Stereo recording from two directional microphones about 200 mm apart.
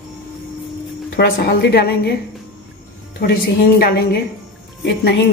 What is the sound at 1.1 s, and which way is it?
A woman's voice, 50° left (ahead or behind).